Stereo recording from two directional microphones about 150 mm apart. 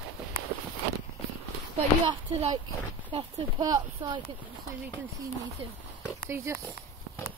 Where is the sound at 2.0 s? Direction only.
40° right (ahead or behind).